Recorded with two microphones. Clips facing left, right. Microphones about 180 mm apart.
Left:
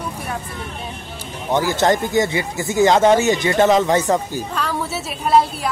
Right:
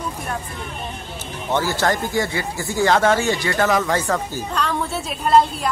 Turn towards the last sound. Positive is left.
turn(degrees=5)  # may be behind; listen again after turning